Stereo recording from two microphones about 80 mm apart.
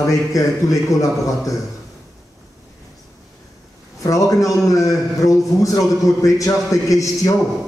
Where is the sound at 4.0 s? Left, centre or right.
Left.